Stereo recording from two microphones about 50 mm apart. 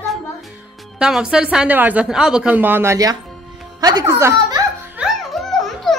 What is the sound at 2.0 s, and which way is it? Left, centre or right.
Speech, centre.